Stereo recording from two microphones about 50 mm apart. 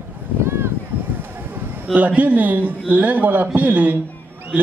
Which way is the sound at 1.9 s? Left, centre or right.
Right.